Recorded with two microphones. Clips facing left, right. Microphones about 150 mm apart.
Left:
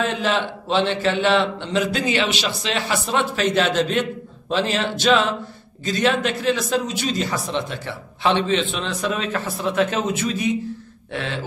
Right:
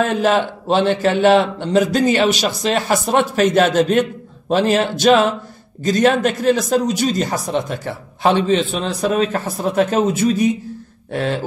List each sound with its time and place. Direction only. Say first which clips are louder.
0.0 s a man's voice: right 6 dB; 45° right (ahead or behind)